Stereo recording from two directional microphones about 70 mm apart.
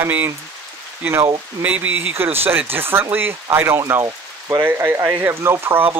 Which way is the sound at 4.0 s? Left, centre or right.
Right.